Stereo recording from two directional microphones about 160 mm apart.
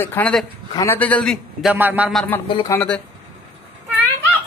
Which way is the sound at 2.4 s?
30° left (ahead or behind).